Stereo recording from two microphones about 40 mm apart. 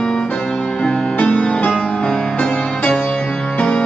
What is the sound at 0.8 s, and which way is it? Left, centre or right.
Music, left.